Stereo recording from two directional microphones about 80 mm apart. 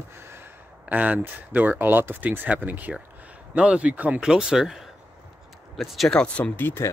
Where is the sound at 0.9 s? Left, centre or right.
Centre.